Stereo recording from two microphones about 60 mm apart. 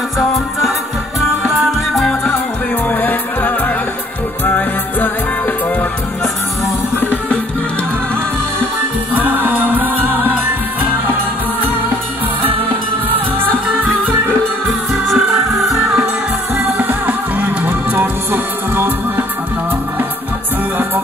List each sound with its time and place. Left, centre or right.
2.9 s music: left
9.2 s music: right
13.1 s music: right
15.1 s music: centre
16.6 s music: right